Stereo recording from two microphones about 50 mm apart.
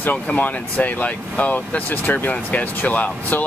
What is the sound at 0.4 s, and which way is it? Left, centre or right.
Speech, left.